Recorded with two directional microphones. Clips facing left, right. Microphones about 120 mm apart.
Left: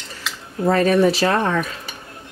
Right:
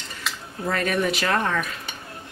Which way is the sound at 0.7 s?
35° left (ahead or behind).